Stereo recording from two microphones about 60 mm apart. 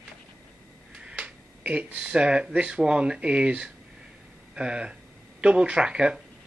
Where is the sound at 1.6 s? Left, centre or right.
Right.